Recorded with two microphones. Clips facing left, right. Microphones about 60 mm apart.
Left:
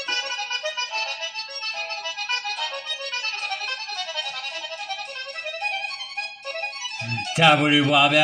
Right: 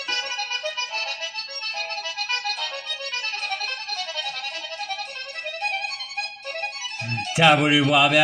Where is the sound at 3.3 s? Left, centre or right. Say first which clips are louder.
Right 2 dB; centre.